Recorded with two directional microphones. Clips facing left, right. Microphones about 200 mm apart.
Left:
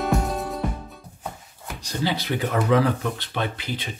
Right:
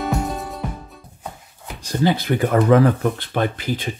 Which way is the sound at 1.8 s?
50° right (ahead or behind).